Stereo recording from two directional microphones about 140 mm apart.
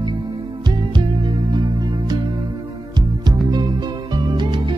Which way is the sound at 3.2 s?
30° right (ahead or behind).